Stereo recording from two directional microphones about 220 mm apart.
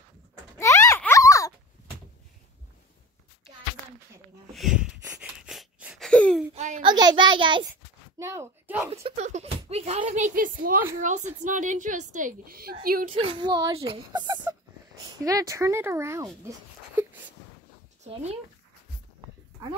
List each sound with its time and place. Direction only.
0.6 s a sound: 15° left (ahead or behind)
4.6 s wheeze: 5° right (ahead or behind)
6.5 s a sound: 30° right (ahead or behind)
6.9 s a child's voice: 20° right (ahead or behind)
8.9 s speech: 30° right (ahead or behind)
13.1 s a woman's voice: 25° right (ahead or behind)
18.0 s speech: 30° right (ahead or behind)